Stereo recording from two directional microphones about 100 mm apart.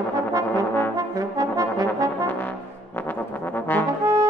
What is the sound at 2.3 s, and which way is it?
Brass instrument, 20° left (ahead or behind).